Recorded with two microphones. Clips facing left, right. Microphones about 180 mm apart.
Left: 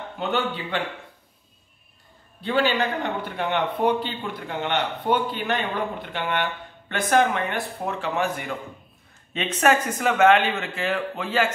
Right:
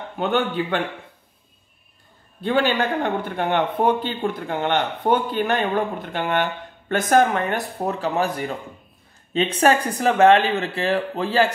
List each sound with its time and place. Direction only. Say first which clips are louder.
0.2 s speech: right 5 dB; 50° right (ahead or behind)
2.4 s speech: right 2 dB; 50° right (ahead or behind); by 11.5 s 35° right (ahead or behind)